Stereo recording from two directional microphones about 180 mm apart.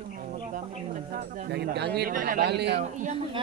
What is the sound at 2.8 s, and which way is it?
Speech, 45° right (ahead or behind).